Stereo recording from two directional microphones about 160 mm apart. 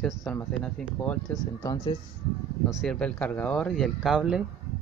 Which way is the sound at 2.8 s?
5° left (ahead or behind).